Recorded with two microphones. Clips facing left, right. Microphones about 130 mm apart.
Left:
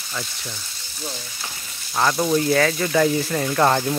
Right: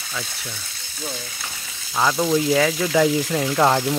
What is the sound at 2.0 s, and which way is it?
Speech, 5° right (ahead or behind).